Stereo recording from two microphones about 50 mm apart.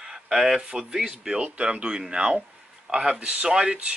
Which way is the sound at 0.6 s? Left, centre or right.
Centre.